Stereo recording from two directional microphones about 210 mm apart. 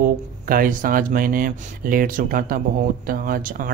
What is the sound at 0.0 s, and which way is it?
Speech, 40° right (ahead or behind).